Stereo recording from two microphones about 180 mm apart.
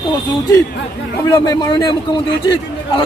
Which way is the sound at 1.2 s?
20° left (ahead or behind).